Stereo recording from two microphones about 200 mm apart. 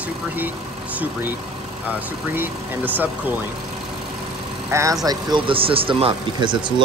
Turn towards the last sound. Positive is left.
turn(degrees=-25)  # may be behind; listen again after turning